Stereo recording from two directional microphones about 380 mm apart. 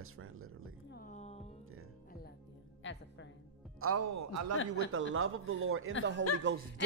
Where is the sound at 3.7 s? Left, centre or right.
Right.